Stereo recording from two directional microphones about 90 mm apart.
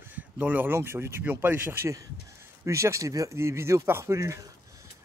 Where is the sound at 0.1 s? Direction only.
20° right (ahead or behind).